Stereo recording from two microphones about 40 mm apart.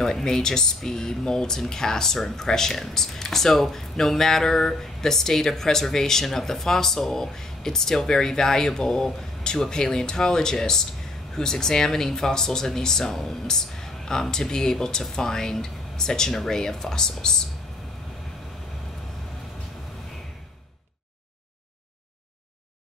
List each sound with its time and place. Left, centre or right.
0.0 s speech: centre